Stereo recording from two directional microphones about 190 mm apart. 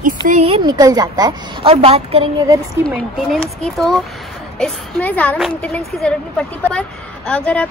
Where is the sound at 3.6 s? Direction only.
Centre (ahead or behind).